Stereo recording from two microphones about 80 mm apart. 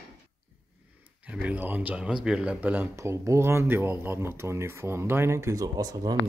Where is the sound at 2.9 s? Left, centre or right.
Right.